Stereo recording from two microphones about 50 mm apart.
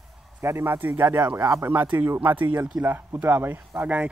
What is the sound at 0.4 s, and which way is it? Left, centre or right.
Speech, right.